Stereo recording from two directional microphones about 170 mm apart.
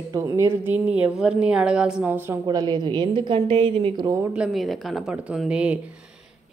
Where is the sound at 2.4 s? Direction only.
25° right (ahead or behind).